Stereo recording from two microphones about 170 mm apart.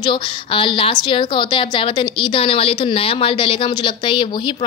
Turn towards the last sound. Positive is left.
turn(degrees=30)  # may be behind; listen again after turning